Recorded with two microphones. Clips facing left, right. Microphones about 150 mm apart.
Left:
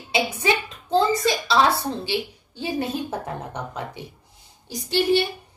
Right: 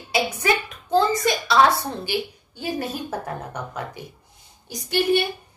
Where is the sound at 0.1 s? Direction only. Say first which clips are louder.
Even; 25° left (ahead or behind).